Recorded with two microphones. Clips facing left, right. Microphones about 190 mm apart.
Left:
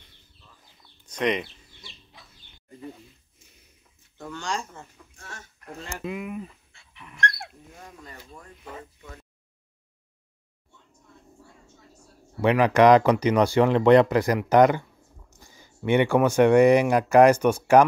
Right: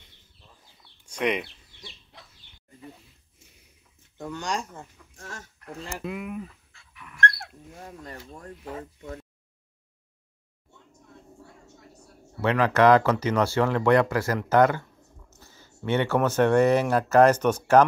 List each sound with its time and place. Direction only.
1.0 s speech: 10° right (ahead or behind)
4.2 s speech: 15° right (ahead or behind)
5.1 s a sound: 45° right (ahead or behind)
5.9 s speech: centre (ahead or behind)
6.4 s dog: 25° left (ahead or behind)
7.2 s dog: 15° left (ahead or behind)
7.8 s speech: 40° right (ahead or behind)
12.4 s speech: 15° left (ahead or behind)